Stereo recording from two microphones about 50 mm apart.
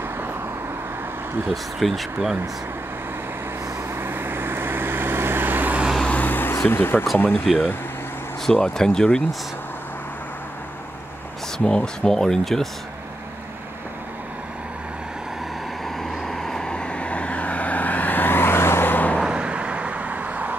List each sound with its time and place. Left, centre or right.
1.5 s speech: centre
3.9 s vehicle: right
6.2 s a sound: left
6.7 s speech: left
7.4 s speech: centre
8.6 s speech: centre
11.5 s speech: centre
16.0 s vehicle: centre; by 19.1 s left
19.2 s vehicle: right